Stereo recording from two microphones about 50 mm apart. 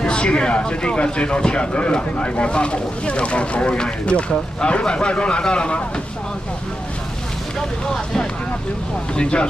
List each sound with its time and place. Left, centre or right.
0.0 s speech: centre
7.8 s speech: centre